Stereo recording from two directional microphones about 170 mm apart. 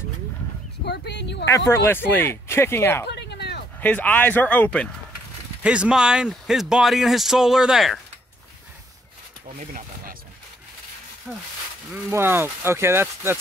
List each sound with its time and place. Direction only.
0.8 s speech: 80° left
1.7 s speech: 15° left (ahead or behind)
3.1 s a sound: 80° left
3.8 s speech: 10° left (ahead or behind)
5.6 s speech: 5° right (ahead or behind)
9.6 s speech: 50° right (ahead or behind)
11.3 s speech: 5° right (ahead or behind)